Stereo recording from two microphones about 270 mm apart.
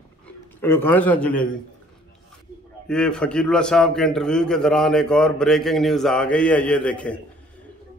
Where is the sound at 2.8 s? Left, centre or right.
Centre.